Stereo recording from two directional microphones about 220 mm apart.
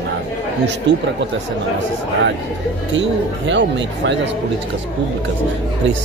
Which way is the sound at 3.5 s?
55° right (ahead or behind).